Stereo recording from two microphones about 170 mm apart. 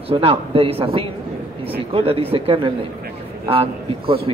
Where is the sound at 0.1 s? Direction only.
35° right (ahead or behind).